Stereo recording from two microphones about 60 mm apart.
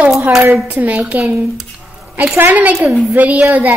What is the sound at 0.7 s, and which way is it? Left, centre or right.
A woman's voice, right.